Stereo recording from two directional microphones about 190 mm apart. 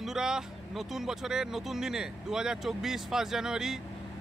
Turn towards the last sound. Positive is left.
turn(degrees=-5)  # may be behind; listen again after turning